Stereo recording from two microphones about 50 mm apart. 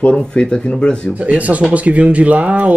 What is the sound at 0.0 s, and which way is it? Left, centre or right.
Speech, left.